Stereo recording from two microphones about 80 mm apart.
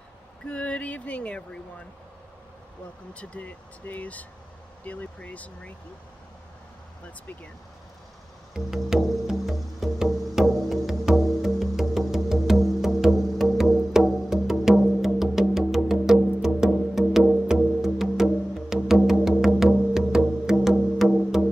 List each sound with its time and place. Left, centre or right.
0.5 s a sound: centre
3.1 s speech: centre
8.5 s music: centre